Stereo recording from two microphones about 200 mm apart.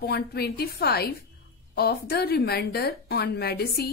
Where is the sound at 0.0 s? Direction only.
50° left (ahead or behind).